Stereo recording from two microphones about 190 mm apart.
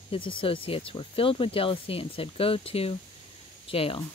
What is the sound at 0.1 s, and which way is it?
Speech, 25° left (ahead or behind).